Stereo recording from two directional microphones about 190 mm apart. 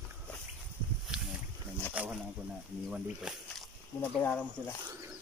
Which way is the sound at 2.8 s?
Centre (ahead or behind).